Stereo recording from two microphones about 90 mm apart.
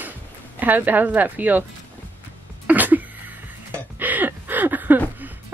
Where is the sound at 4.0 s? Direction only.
20° right (ahead or behind).